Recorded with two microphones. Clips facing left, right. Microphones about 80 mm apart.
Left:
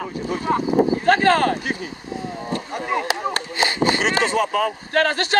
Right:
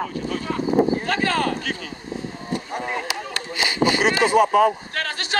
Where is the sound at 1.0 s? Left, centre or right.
Left.